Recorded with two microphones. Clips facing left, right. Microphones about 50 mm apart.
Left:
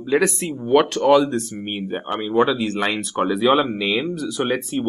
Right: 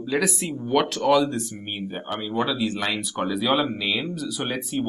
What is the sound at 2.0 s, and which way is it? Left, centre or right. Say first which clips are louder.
Speech: left 5 dB; left.